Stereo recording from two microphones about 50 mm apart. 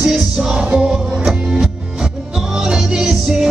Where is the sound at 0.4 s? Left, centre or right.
Centre.